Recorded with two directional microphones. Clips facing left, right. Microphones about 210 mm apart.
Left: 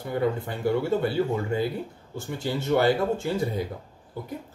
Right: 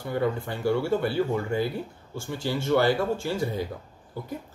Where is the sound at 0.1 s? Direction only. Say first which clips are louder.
Left 1 dB; 20° left (ahead or behind).